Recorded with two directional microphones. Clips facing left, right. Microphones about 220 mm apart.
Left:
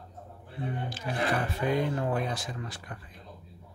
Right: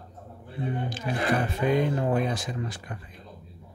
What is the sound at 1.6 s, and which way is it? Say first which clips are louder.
Speech: right 3 dB; 20° right (ahead or behind).